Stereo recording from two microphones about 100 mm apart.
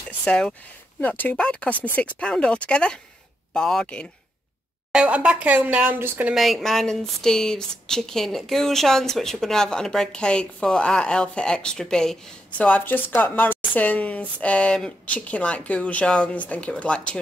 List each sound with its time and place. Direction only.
0.2 s speech: 10° left (ahead or behind)
4.9 s speech: 10° right (ahead or behind)
6.3 s speech: centre (ahead or behind)